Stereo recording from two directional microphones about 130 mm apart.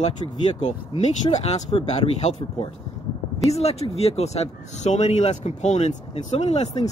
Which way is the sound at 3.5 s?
55° left (ahead or behind).